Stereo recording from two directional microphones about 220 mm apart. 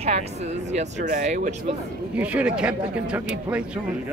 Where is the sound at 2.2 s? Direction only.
5° right (ahead or behind).